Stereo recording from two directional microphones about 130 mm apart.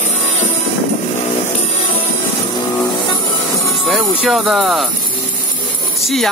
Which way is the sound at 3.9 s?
Centre (ahead or behind).